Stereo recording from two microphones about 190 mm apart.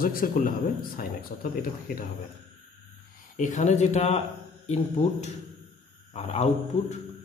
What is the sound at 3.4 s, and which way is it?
A man's voice, 40° left (ahead or behind).